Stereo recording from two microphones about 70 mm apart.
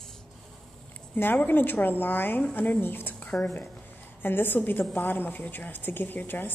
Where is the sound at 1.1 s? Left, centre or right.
Left.